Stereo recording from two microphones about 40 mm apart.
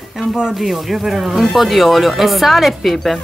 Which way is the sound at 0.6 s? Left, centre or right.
Centre.